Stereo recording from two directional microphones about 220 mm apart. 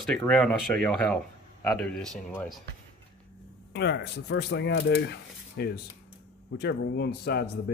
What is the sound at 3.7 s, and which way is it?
Speech, 50° left (ahead or behind).